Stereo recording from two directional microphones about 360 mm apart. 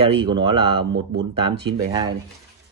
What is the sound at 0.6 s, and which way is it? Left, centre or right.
Speech, right.